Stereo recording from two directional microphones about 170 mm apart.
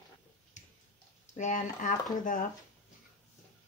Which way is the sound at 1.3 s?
45° left (ahead or behind).